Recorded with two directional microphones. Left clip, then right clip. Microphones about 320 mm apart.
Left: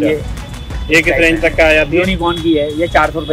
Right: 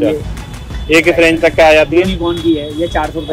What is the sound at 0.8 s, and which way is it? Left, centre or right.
Speech, right.